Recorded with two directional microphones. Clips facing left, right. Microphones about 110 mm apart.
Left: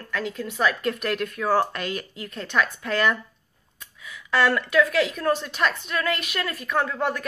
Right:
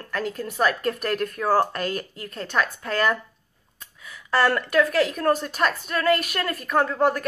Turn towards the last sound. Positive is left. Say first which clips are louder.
# right 4 dB
turn(degrees=-35)  # may be behind; listen again after turning